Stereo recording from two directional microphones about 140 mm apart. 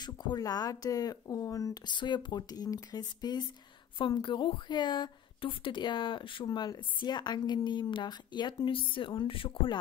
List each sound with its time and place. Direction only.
0.0 s a woman's voice: 30° left (ahead or behind)